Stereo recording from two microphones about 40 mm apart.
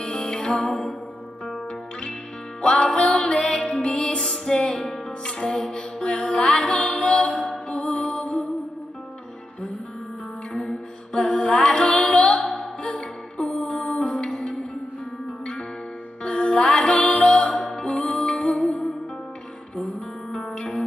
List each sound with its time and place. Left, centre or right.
0.0 s music: left
2.6 s music: left
5.4 s music: centre
5.8 s mantra: left
6.5 s music: left
10.5 s music: left
11.2 s music: centre
20.2 s music: centre